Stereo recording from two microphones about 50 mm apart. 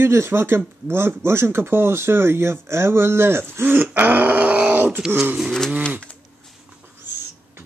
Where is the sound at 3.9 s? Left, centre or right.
Right.